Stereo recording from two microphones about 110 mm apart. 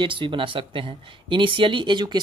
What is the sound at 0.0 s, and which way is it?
Speech, 50° right (ahead or behind).